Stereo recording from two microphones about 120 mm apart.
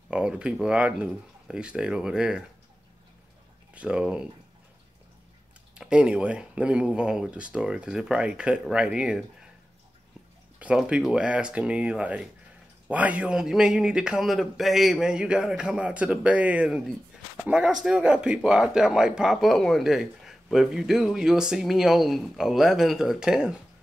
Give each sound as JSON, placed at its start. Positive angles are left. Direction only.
{"t": 0.1, "sound": "speech", "side_deg": -10}
{"t": 3.7, "sound": "speech", "side_deg": -10}
{"t": 5.8, "sound": "speech", "side_deg": -10}
{"t": 10.6, "sound": "speech", "side_deg": -10}